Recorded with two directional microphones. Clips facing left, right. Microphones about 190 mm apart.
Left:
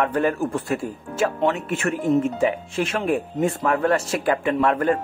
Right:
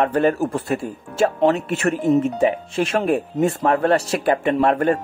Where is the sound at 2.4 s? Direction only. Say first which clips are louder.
Right 3 dB; 25° right (ahead or behind).